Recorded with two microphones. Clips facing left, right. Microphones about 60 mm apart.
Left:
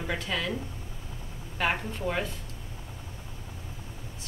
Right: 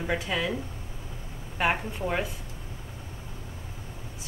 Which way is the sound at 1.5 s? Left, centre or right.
Centre.